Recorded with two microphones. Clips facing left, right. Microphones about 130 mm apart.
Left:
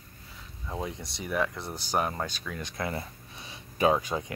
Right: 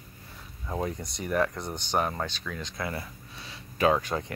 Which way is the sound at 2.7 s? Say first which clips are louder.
Left 3 dB; 25° left (ahead or behind).